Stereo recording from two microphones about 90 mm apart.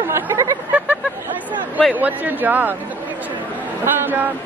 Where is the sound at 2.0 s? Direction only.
20° right (ahead or behind).